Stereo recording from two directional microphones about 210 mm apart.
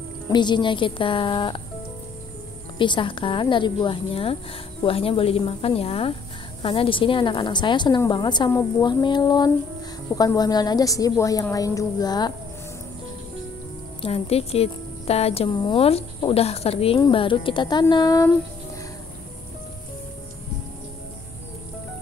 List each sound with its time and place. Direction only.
0.3 s a woman's voice: 20° left (ahead or behind)
2.8 s a woman's voice: 25° left (ahead or behind)
14.0 s a woman's voice: 30° left (ahead or behind)